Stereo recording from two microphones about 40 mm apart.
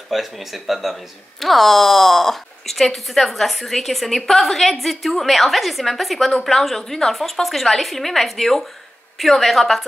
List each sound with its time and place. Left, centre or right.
0.1 s speech: centre